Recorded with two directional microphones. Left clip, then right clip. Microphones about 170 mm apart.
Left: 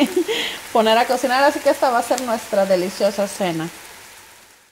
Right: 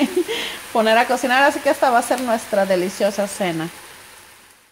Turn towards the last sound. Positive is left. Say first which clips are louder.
# even
turn(degrees=10)  # may be behind; listen again after turning